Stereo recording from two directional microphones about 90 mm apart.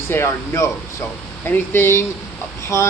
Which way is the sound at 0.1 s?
25° left (ahead or behind).